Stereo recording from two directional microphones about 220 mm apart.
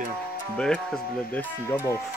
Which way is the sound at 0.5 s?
5° left (ahead or behind).